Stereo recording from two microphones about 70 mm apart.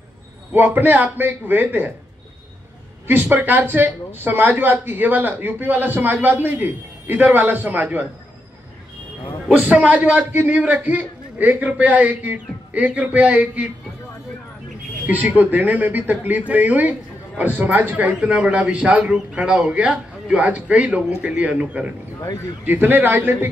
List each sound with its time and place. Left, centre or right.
0.5 s speech: right
3.1 s speech: right
9.5 s speech: right
15.0 s a man's voice: right